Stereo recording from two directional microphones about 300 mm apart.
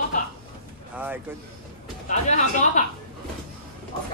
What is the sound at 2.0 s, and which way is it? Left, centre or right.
Speech, left.